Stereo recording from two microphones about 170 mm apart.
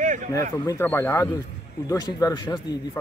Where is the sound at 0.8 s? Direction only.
15° left (ahead or behind).